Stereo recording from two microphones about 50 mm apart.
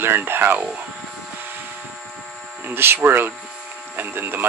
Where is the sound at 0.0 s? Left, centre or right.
Right.